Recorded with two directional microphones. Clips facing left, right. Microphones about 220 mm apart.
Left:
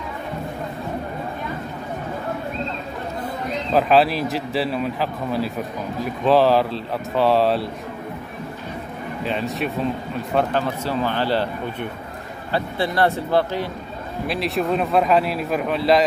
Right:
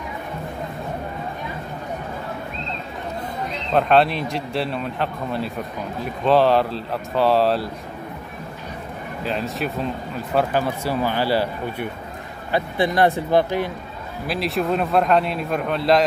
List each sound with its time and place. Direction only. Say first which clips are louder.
3.7 s a man's voice: even; 5° left (ahead or behind)
9.2 s speech: left 1 dB; centre (ahead or behind); by 13.7 s 15° right (ahead or behind)
14.2 s a man's voice: even; centre (ahead or behind)